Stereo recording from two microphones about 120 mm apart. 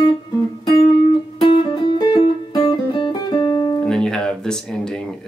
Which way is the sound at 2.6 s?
40° left (ahead or behind).